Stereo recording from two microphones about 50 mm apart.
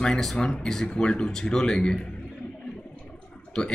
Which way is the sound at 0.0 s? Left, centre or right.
Centre.